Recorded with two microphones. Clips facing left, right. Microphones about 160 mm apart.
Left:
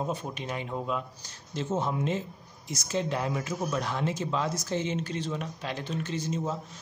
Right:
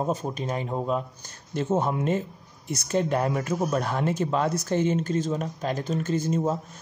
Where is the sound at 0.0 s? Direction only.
40° right (ahead or behind).